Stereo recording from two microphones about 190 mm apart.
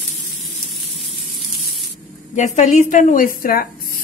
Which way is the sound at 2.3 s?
40° left (ahead or behind).